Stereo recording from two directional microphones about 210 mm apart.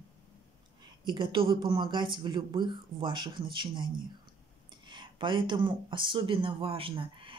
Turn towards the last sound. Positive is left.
turn(degrees=-25)  # may be behind; listen again after turning